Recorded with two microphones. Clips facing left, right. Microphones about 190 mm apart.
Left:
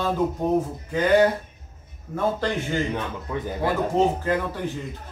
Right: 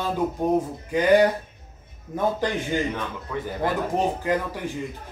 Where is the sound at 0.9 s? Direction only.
15° right (ahead or behind).